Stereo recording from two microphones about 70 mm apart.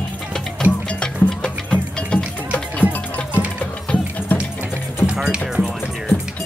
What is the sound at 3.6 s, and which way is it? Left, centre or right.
Music, centre.